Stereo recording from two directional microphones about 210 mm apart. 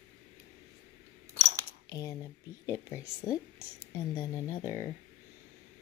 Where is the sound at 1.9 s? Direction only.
15° left (ahead or behind).